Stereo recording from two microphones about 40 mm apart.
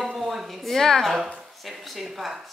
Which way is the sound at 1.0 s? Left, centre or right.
Centre.